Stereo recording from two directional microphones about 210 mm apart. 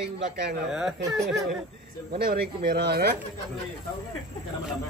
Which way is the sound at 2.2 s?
45° right (ahead or behind).